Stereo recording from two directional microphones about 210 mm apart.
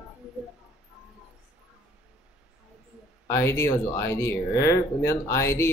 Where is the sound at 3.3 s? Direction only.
15° left (ahead or behind).